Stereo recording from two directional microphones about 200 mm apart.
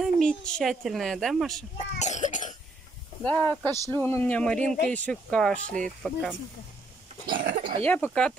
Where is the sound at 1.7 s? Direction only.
35° left (ahead or behind).